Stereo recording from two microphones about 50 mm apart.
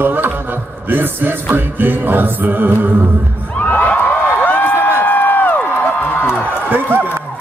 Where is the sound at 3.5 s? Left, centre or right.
Left.